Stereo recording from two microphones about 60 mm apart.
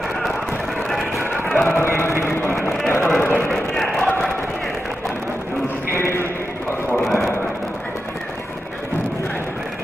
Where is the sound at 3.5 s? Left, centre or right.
Centre.